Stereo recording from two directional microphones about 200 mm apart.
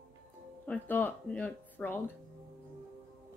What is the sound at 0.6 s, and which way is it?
Speech, 10° left (ahead or behind).